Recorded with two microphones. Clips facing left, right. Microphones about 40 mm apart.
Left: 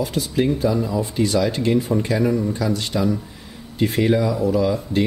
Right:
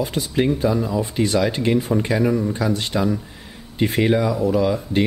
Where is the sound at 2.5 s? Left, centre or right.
Right.